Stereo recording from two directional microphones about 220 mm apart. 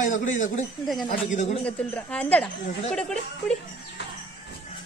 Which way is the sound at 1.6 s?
5° left (ahead or behind).